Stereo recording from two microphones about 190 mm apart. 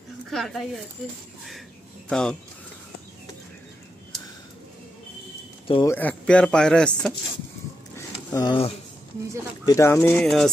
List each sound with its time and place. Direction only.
0.3 s speech: centre (ahead or behind)
2.0 s speech: 5° left (ahead or behind)
5.9 s speech: 10° left (ahead or behind)
8.3 s speech: 20° left (ahead or behind)
9.7 s speech: 15° left (ahead or behind)